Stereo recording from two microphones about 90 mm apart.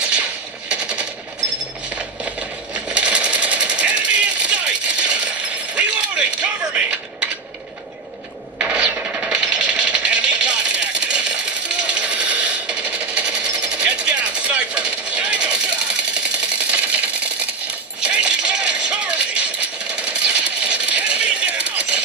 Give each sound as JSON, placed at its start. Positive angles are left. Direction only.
{"t": 0.7, "sound": "a sound", "side_deg": -15}
{"t": 5.8, "sound": "mechanisms", "side_deg": -10}
{"t": 8.5, "sound": "machine gun", "side_deg": -15}
{"t": 16.7, "sound": "typewriter", "side_deg": -15}
{"t": 18.0, "sound": "music", "side_deg": -10}
{"t": 20.1, "sound": "a sound", "side_deg": -10}